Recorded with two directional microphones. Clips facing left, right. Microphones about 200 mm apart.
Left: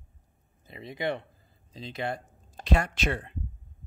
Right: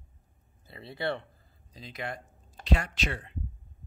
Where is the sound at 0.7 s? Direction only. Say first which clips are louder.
Left 2 dB; 15° left (ahead or behind).